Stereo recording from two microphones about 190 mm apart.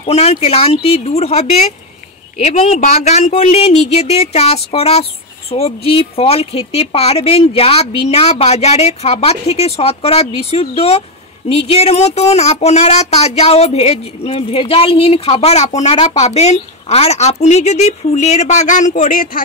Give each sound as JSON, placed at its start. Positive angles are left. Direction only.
{"t": 0.0, "sound": "speech", "side_deg": 30}